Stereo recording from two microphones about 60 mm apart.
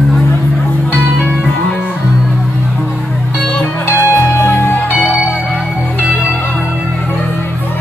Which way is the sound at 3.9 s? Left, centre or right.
Left.